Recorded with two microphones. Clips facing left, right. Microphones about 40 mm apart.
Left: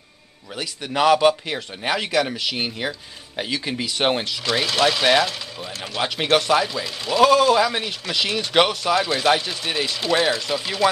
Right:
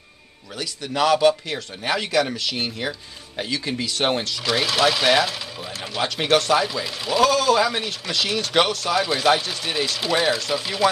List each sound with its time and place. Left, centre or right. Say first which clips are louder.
0.6 s speech: left 1 dB; centre
4.5 s a man's voice: even; centre
7.2 s a man's voice: left 3 dB; centre